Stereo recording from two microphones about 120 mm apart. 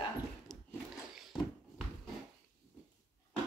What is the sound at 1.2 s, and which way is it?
Dog, 5° right (ahead or behind).